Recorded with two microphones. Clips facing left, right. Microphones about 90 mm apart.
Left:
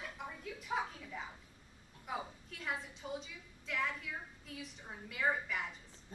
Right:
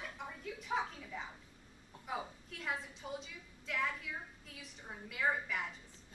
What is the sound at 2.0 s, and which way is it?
A woman's voice, centre (ahead or behind).